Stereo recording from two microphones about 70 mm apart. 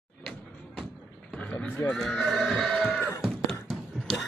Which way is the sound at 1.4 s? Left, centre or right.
Centre.